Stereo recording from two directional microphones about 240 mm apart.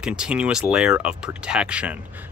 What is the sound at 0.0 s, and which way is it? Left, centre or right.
Speech, centre.